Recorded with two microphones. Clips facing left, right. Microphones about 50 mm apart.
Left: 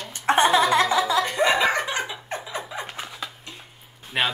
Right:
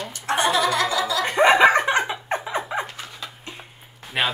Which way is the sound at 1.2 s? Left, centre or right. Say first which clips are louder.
Right 6 dB; right.